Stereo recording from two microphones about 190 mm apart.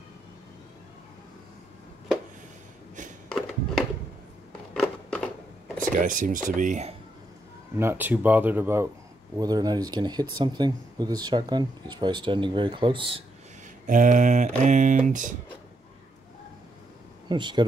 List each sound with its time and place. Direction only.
3.3 s a sound: centre (ahead or behind)
4.7 s scissors: 5° left (ahead or behind)
5.8 s speech: 45° right (ahead or behind)
7.7 s speech: 10° right (ahead or behind)
13.8 s speech: 45° right (ahead or behind)
17.3 s speech: 25° right (ahead or behind)